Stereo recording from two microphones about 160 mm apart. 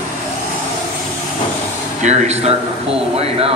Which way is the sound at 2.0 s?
45° right (ahead or behind).